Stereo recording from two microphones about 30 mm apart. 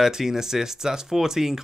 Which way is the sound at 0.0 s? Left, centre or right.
Centre.